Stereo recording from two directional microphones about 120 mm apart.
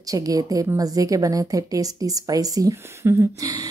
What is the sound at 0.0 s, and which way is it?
Speech, 30° right (ahead or behind).